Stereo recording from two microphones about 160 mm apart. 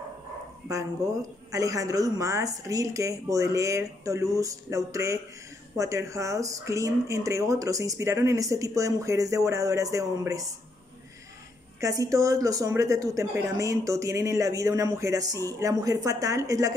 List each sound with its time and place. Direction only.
1.0 s speech: 20° right (ahead or behind)
11.8 s speech: 20° right (ahead or behind)